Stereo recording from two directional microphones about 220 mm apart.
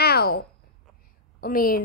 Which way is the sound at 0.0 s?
45° left (ahead or behind).